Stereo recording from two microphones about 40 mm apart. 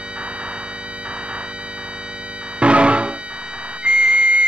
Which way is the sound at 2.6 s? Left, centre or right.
Right.